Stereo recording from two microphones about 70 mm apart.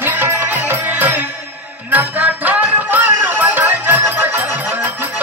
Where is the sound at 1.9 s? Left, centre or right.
Right.